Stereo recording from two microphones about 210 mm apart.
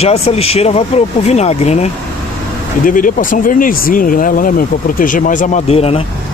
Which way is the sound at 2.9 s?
40° left (ahead or behind).